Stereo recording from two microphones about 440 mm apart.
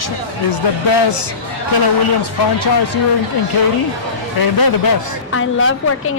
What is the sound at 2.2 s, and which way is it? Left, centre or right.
Speech, left.